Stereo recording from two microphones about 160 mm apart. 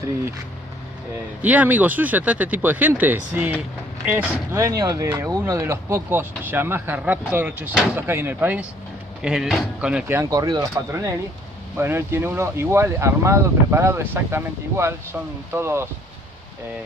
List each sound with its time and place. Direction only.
1.4 s speech: 10° right (ahead or behind)